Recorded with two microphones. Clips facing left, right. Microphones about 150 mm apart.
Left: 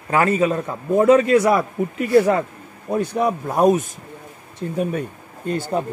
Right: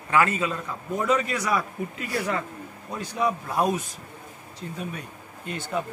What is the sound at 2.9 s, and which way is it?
A man's voice, 55° left (ahead or behind).